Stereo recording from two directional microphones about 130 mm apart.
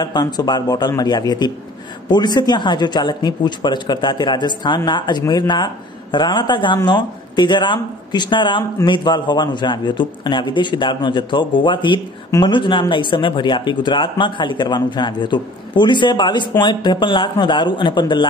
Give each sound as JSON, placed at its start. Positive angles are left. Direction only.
{"t": 0.0, "sound": "speech", "side_deg": 30}